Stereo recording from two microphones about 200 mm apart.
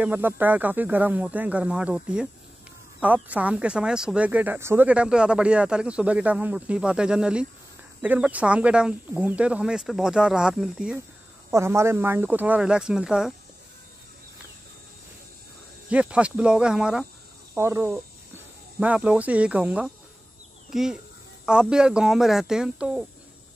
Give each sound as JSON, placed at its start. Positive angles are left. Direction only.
{"t": 0.0, "sound": "speech", "side_deg": -10}
{"t": 15.9, "sound": "speech", "side_deg": -5}